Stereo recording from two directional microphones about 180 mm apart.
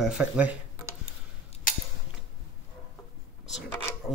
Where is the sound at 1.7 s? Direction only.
50° left (ahead or behind).